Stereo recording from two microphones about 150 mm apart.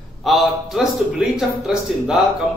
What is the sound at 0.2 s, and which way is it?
A man's voice, centre (ahead or behind).